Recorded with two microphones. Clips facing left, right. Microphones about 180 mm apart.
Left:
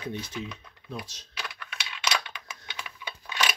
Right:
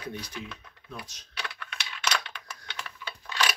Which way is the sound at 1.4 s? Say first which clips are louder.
Even; 5° left (ahead or behind).